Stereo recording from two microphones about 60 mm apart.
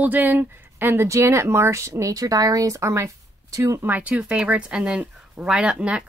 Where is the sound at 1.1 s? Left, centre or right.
Right.